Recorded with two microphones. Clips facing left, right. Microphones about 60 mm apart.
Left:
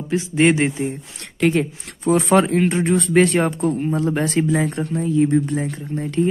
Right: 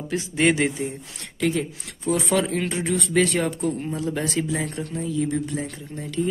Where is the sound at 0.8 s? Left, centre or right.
Left.